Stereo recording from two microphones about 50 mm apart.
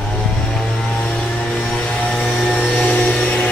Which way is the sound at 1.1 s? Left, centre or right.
Centre.